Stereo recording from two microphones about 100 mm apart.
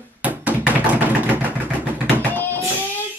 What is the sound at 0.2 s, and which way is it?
Tap, 15° right (ahead or behind).